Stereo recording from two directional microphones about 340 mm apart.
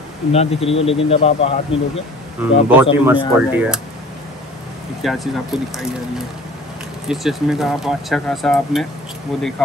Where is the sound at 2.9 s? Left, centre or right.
Centre.